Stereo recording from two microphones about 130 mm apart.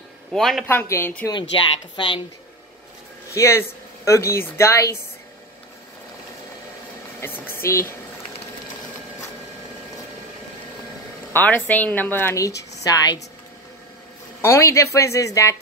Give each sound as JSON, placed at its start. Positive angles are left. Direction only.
{"t": 0.3, "sound": "a man's voice", "side_deg": 0}
{"t": 0.7, "sound": "a woman's voice", "side_deg": 20}
{"t": 2.0, "sound": "speech", "side_deg": 35}
{"t": 3.3, "sound": "speech", "side_deg": 20}
{"t": 7.2, "sound": "speech", "side_deg": 15}
{"t": 11.3, "sound": "a woman's voice", "side_deg": 15}
{"t": 14.4, "sound": "speech", "side_deg": 20}